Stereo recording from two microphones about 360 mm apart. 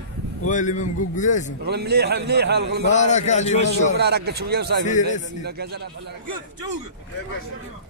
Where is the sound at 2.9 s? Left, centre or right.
Centre.